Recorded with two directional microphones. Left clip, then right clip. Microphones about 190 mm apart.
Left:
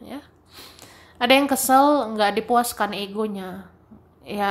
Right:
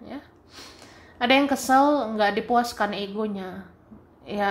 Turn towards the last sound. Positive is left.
turn(degrees=10)  # may be behind; listen again after turning